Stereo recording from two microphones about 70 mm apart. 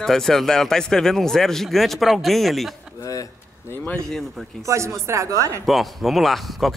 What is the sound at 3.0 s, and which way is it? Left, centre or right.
Speech, left.